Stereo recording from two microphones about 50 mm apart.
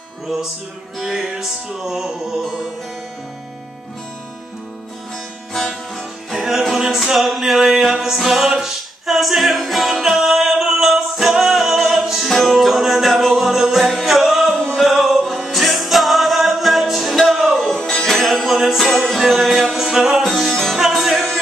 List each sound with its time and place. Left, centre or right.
0.3 s music: centre
5.5 s music: centre
6.3 s music: centre
17.6 s music: centre
20.4 s music: centre
20.7 s music: centre